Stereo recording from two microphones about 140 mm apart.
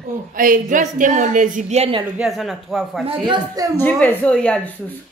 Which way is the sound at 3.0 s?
40° right (ahead or behind).